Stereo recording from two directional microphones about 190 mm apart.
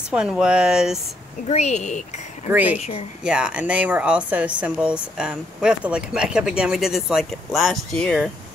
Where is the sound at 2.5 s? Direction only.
10° right (ahead or behind).